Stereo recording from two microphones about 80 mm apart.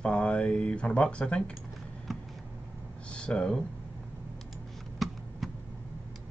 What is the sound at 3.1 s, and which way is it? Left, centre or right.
Speech, centre.